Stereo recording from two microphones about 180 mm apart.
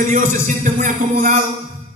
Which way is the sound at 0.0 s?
45° right (ahead or behind).